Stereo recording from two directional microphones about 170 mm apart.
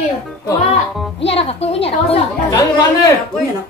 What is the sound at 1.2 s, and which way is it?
A woman's voice, 35° left (ahead or behind).